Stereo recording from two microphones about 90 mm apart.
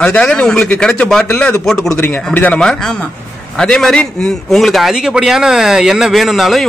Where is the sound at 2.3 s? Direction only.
15° left (ahead or behind).